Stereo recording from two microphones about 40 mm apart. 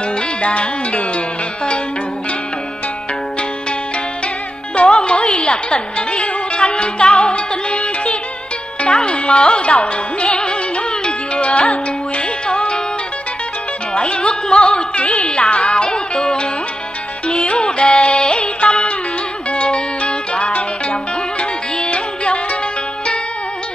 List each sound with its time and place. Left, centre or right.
0.4 s music: left
4.7 s music: left
13.9 s music: left